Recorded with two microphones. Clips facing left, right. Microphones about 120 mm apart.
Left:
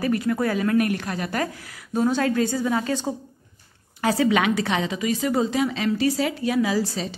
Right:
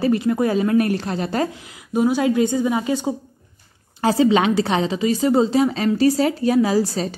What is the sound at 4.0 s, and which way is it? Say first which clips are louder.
A woman's voice: right 4 dB; 25° right (ahead or behind).